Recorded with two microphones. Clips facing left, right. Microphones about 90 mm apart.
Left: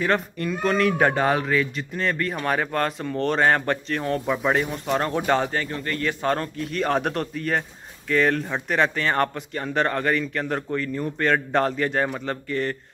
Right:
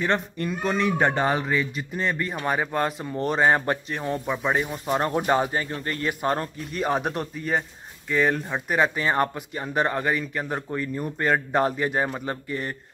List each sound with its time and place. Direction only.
0.0 s speech: centre (ahead or behind); by 6.5 s 20° right (ahead or behind)
6.6 s speech: 5° right (ahead or behind)